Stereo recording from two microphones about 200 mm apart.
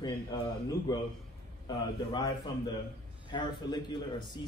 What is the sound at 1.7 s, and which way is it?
A man's voice, 20° left (ahead or behind).